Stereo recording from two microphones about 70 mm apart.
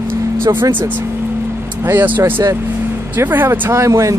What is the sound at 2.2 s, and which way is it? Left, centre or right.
Speech, right.